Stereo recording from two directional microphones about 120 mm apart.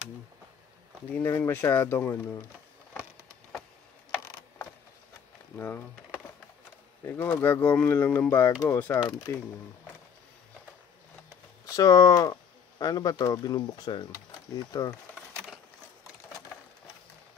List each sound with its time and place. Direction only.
1.2 s speech: 20° left (ahead or behind)
5.6 s speech: 15° left (ahead or behind)
8.3 s speech: 25° left (ahead or behind)
8.6 s speech: 15° left (ahead or behind)
11.6 s speech: 30° left (ahead or behind)